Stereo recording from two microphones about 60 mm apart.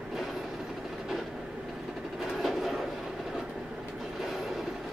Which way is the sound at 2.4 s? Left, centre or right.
Centre.